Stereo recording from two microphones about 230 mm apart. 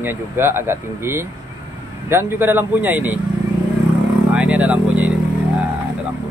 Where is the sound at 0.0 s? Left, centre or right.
Centre.